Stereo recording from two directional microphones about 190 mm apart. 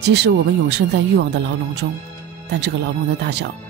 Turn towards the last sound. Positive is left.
turn(degrees=-60)  # may be behind; listen again after turning